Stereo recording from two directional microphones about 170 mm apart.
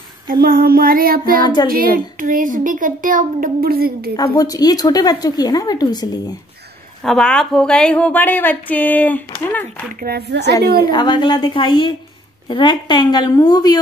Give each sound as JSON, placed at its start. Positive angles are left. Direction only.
{"t": 0.3, "sound": "child singing", "side_deg": -60}
{"t": 1.4, "sound": "speech", "side_deg": 25}
{"t": 1.7, "sound": "a child's voice", "side_deg": -55}
{"t": 4.2, "sound": "speech", "side_deg": 20}
{"t": 7.0, "sound": "a woman's voice", "side_deg": 5}
{"t": 9.9, "sound": "a woman's voice", "side_deg": -70}
{"t": 10.9, "sound": "speech", "side_deg": 25}